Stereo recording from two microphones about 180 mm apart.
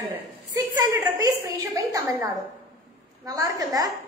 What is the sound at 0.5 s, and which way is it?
A woman's voice, 20° right (ahead or behind).